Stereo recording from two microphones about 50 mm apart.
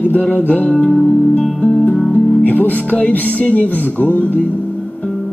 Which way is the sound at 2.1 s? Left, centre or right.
Left.